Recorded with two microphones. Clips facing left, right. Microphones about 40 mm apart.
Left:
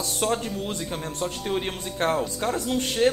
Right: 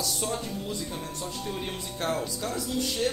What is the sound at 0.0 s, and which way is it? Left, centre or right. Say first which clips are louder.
Speech: left 5 dB; left.